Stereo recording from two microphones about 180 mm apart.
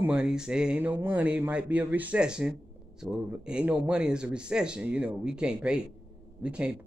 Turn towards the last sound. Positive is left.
turn(degrees=-5)  # may be behind; listen again after turning